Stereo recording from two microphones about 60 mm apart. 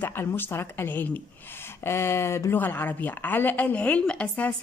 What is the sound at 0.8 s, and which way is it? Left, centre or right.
Speech, left.